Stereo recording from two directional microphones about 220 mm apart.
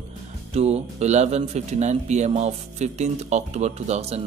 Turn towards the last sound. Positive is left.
turn(degrees=-30)  # may be behind; listen again after turning